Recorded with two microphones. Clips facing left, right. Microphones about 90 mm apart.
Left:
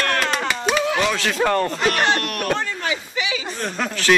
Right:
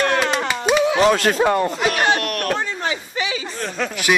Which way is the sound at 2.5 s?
20° right (ahead or behind).